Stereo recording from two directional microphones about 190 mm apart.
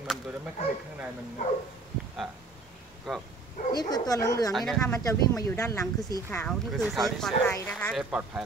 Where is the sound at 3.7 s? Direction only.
20° left (ahead or behind).